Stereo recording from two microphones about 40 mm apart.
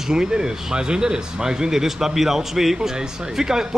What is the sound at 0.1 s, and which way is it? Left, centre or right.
Speech, centre.